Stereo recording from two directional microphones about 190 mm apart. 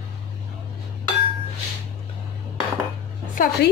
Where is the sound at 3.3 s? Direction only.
45° left (ahead or behind).